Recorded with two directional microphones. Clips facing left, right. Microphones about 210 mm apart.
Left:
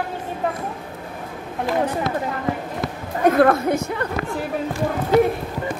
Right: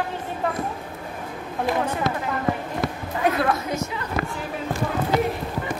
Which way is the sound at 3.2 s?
50° left (ahead or behind).